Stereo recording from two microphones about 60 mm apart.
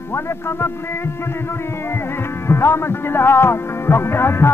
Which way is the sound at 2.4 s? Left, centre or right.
Left.